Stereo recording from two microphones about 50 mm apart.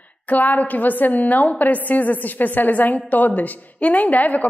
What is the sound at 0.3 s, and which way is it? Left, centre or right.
A woman's voice, left.